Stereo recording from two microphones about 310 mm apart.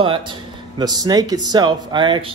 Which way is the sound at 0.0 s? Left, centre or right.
Centre.